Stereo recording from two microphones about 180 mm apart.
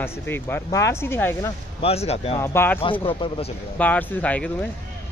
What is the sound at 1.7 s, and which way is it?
Speech, 35° left (ahead or behind).